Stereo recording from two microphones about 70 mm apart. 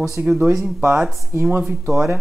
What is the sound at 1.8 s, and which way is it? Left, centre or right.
Speech, centre.